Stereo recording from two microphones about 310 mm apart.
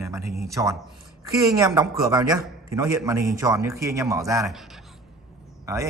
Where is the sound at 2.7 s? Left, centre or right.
Centre.